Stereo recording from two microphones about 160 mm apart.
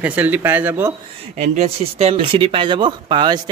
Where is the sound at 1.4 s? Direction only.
45° right (ahead or behind).